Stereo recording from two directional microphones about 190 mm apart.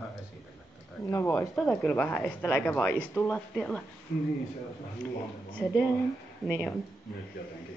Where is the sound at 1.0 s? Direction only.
15° left (ahead or behind).